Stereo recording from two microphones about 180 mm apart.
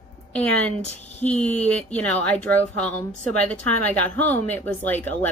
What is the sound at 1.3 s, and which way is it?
Speech, 40° left (ahead or behind).